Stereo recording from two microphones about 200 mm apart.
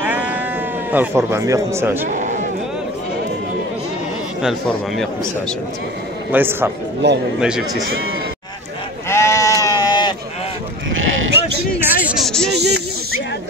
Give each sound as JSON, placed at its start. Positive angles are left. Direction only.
{"t": 0.0, "sound": "sheep", "side_deg": -10}
{"t": 0.9, "sound": "a man's voice", "side_deg": -15}
{"t": 2.0, "sound": "a sound", "side_deg": -35}
{"t": 4.4, "sound": "a man's voice", "side_deg": 0}
{"t": 6.3, "sound": "a man's voice", "side_deg": -10}
{"t": 7.0, "sound": "a man's voice", "side_deg": -60}
{"t": 7.3, "sound": "a man's voice", "side_deg": -5}
{"t": 9.1, "sound": "sheep", "side_deg": 15}
{"t": 11.8, "sound": "a sound", "side_deg": -5}
{"t": 12.5, "sound": "snake", "side_deg": -55}